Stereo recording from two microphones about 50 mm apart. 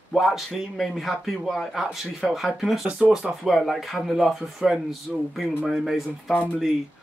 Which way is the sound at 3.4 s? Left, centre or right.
Centre.